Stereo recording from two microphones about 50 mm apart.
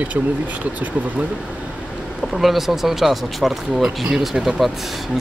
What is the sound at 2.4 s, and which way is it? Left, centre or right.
Speech, centre.